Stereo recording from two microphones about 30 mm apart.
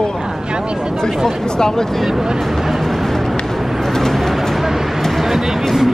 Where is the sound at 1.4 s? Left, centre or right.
Left.